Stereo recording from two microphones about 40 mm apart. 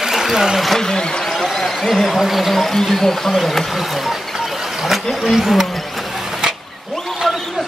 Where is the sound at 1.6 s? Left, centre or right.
Centre.